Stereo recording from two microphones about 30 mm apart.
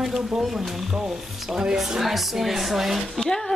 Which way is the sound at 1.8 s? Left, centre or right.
Centre.